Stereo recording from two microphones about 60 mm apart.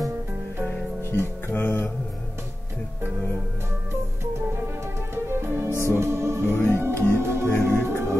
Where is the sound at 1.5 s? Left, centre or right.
Left.